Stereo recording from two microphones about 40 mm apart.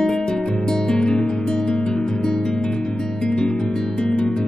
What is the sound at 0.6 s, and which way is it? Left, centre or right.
Music, centre.